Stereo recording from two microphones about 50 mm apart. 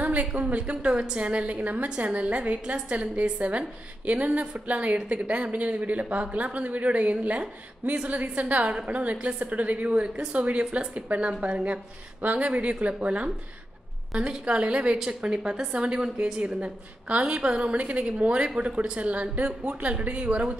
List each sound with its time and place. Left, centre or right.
0.0 s a woman's voice: right
18.8 s a woman's voice: right